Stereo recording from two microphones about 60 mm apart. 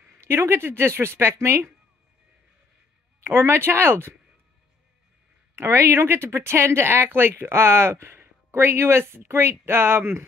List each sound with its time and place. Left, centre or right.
0.2 s speech: right
3.3 s speech: right
5.6 s speech: right